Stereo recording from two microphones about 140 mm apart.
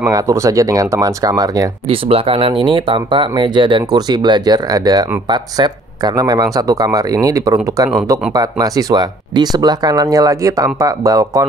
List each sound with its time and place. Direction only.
0.0 s speech: 20° right (ahead or behind)
1.9 s speech: 45° right (ahead or behind); by 11.4 s 25° right (ahead or behind)